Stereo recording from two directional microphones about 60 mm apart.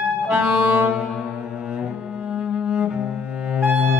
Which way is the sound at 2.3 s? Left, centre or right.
Centre.